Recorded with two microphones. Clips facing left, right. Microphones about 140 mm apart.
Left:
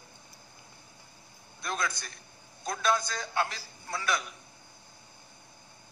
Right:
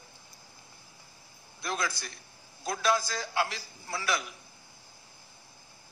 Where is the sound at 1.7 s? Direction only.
30° right (ahead or behind).